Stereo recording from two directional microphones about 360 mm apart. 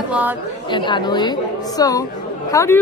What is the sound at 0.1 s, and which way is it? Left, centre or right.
Speech, centre.